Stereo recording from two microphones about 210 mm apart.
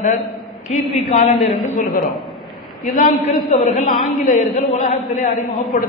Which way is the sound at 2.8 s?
40° left (ahead or behind).